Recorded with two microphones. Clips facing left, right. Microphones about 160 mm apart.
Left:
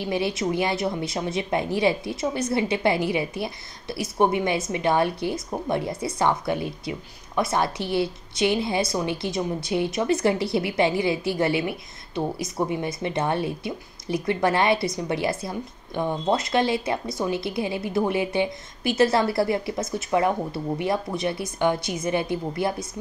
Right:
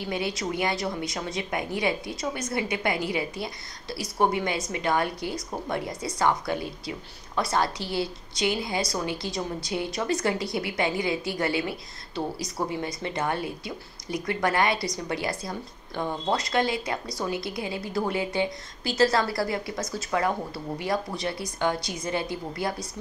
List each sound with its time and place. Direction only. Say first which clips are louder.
0.0 s a woman's voice: left 5 dB; 25° left (ahead or behind)